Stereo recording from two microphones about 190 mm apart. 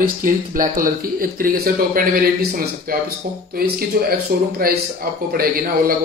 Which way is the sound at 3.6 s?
50° right (ahead or behind).